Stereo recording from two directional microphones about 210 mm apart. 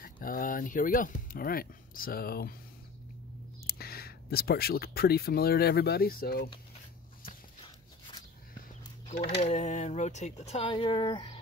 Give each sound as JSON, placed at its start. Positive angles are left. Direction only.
{"t": 0.0, "sound": "speech", "side_deg": 40}
{"t": 3.6, "sound": "speech", "side_deg": 45}
{"t": 7.2, "sound": "a sound", "side_deg": 25}
{"t": 9.1, "sound": "speech", "side_deg": 45}
{"t": 9.4, "sound": "speech", "side_deg": 35}